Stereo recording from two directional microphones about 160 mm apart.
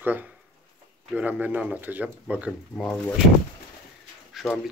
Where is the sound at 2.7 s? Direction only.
Centre (ahead or behind).